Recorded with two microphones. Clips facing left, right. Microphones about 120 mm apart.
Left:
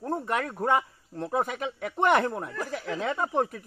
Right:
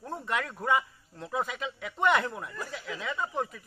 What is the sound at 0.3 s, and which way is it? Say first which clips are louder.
A man's voice: left 2 dB; 40° left (ahead or behind).